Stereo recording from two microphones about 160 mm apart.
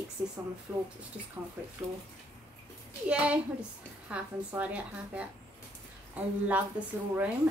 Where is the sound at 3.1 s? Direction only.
10° right (ahead or behind).